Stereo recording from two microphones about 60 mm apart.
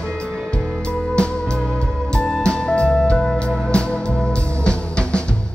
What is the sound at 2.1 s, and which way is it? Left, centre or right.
Music, centre.